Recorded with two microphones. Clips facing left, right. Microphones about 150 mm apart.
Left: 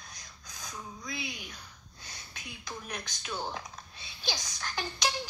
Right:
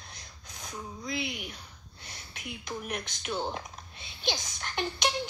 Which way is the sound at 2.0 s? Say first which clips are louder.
Right 5 dB; 25° right (ahead or behind).